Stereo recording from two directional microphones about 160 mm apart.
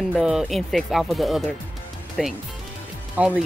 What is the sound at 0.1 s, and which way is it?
Speech, 5° right (ahead or behind).